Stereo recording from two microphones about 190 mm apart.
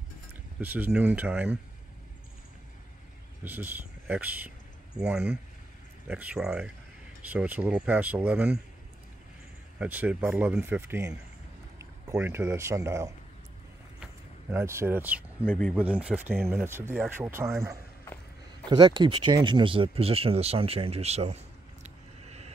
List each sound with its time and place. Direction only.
0.3 s speech: 10° right (ahead or behind)
3.4 s speech: 10° right (ahead or behind)
9.8 s speech: 10° right (ahead or behind)
14.5 s speech: 15° right (ahead or behind)
15.4 s speech: 5° left (ahead or behind)
15.7 s speech: 5° right (ahead or behind)
18.0 s walk: 10° left (ahead or behind)
18.7 s speech: 25° right (ahead or behind)
21.8 s a sound: 35° right (ahead or behind)